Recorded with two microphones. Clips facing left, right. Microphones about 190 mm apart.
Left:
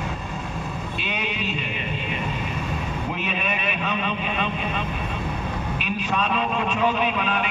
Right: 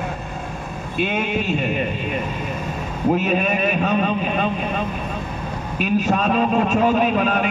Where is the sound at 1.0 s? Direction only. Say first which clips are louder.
Right 11 dB; 50° right (ahead or behind).